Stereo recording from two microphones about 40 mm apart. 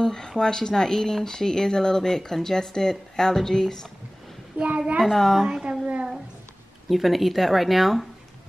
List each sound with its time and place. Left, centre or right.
0.0 s speech: centre
4.7 s a woman's voice: right
5.0 s speech: centre
5.5 s a woman's voice: right
6.9 s speech: centre